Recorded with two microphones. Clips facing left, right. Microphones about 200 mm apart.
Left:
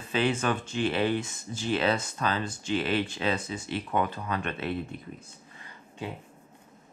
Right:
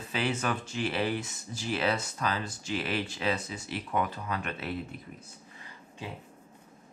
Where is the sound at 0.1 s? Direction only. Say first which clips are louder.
Left 4 dB; 25° left (ahead or behind).